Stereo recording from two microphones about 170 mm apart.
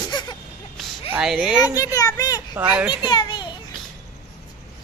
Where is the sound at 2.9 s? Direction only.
25° left (ahead or behind).